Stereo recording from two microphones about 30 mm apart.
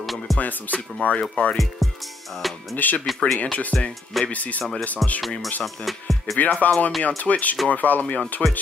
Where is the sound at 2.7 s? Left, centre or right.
Left.